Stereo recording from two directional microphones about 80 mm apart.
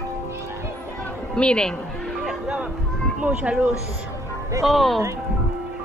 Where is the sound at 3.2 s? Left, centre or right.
Centre.